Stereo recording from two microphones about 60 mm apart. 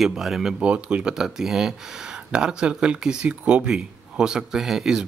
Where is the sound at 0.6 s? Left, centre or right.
Centre.